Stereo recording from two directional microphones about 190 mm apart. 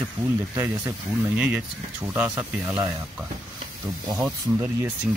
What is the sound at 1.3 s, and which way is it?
Speech, 10° right (ahead or behind).